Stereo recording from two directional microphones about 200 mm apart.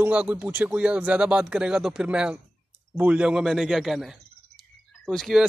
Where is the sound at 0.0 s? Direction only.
5° right (ahead or behind).